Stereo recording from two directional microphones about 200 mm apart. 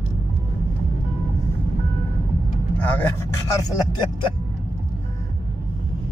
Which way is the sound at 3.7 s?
20° left (ahead or behind).